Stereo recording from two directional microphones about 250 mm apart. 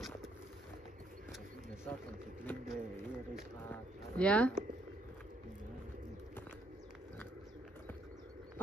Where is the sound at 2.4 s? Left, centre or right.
Centre.